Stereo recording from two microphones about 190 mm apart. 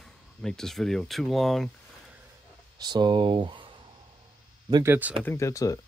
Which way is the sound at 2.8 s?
25° right (ahead or behind).